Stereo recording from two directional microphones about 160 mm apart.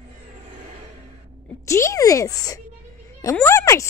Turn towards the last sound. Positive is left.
turn(degrees=20)  # may be behind; listen again after turning